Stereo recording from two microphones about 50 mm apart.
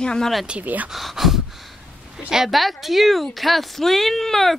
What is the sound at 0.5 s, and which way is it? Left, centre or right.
Speech, right.